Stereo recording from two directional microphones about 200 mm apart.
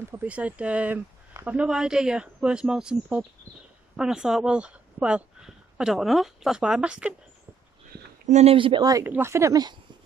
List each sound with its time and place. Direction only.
0.1 s a woman's voice: 10° right (ahead or behind)
8.3 s speech: 30° right (ahead or behind)